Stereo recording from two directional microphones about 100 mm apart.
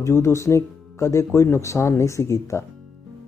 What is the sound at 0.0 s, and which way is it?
Speech, 30° left (ahead or behind).